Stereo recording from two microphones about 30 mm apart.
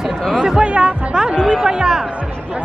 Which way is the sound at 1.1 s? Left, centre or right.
Right.